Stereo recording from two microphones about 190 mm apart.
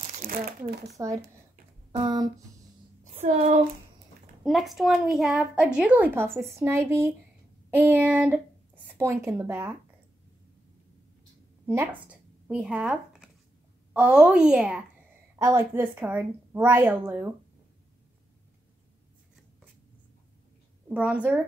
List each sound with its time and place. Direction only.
0.0 s speech: 40° right (ahead or behind); by 0.9 s 55° right (ahead or behind)
0.9 s a woman's voice: 15° right (ahead or behind)
3.0 s a sound: 40° right (ahead or behind)
4.4 s a child's voice: centre (ahead or behind)
11.6 s a sound: 15° right (ahead or behind)
13.9 s a child's voice: 5° right (ahead or behind)
20.9 s a woman's voice: 5° right (ahead or behind)